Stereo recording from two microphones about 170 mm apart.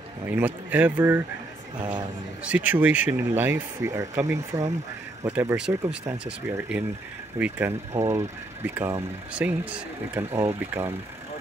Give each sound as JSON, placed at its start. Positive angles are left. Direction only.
{"t": 0.2, "sound": "speech", "side_deg": -10}
{"t": 2.4, "sound": "speech", "side_deg": -10}
{"t": 7.3, "sound": "speech", "side_deg": -10}